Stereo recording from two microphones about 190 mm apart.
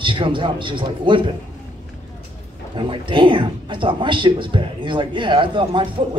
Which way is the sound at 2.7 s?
25° right (ahead or behind).